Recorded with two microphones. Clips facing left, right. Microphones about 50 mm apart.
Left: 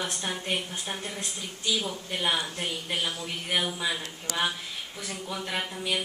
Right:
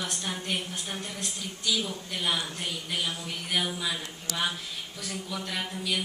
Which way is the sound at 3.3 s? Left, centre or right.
Centre.